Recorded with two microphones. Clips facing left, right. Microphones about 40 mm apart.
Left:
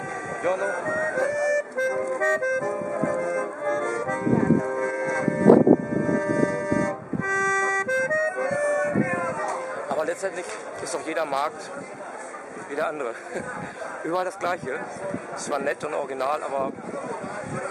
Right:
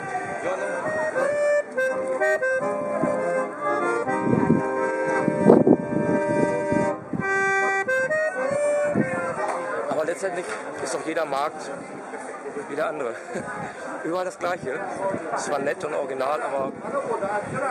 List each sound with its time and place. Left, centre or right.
0.1 s speech: centre
5.9 s music: centre
10.9 s speech: centre
12.7 s speech: centre